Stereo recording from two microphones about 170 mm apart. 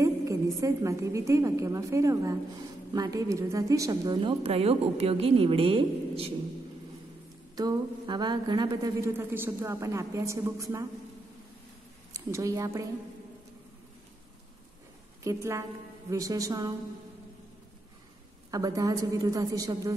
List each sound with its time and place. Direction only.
0.0 s a woman's voice: 20° right (ahead or behind)
7.5 s a woman's voice: 25° right (ahead or behind)
12.1 s speech: 20° right (ahead or behind)
15.2 s a woman's voice: 15° right (ahead or behind)
18.5 s a woman's voice: 20° right (ahead or behind)